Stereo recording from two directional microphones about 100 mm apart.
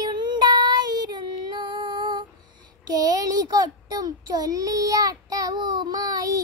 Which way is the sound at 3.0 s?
40° right (ahead or behind).